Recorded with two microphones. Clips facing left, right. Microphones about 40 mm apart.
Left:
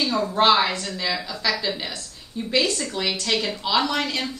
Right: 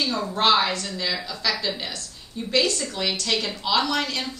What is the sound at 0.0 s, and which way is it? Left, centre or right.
A woman's voice, centre.